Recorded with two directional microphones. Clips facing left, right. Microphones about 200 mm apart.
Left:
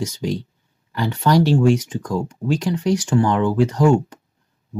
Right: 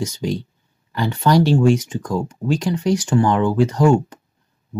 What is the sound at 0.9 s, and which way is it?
Speech, 25° right (ahead or behind).